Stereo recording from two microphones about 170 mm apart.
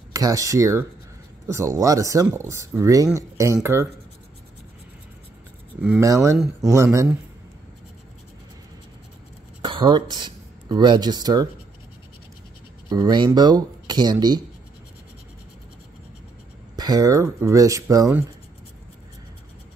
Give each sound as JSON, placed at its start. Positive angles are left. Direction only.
{"t": 0.1, "sound": "speech", "side_deg": -20}
{"t": 5.8, "sound": "speech", "side_deg": -5}
{"t": 6.0, "sound": "speech", "side_deg": -20}
{"t": 6.3, "sound": "speech", "side_deg": 0}
{"t": 6.7, "sound": "speech", "side_deg": -15}
{"t": 9.6, "sound": "speech", "side_deg": -30}
{"t": 12.9, "sound": "speech", "side_deg": -25}
{"t": 16.7, "sound": "speech", "side_deg": -25}